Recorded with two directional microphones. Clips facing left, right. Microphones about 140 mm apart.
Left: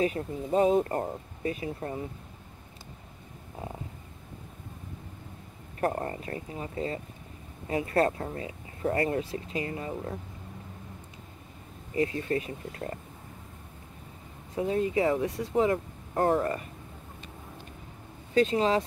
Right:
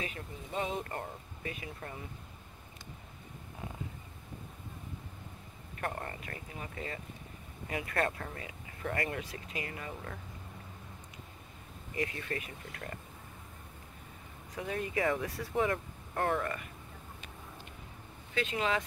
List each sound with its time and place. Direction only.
0.0 s speech: 35° left (ahead or behind)
5.8 s speech: 35° left (ahead or behind)
11.9 s speech: 30° left (ahead or behind)
14.5 s speech: 25° left (ahead or behind)
18.3 s speech: 35° left (ahead or behind)